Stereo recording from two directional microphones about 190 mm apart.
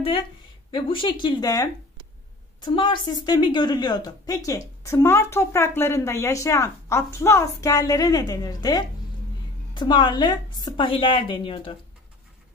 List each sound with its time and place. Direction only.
0.7 s a woman's voice: 25° left (ahead or behind)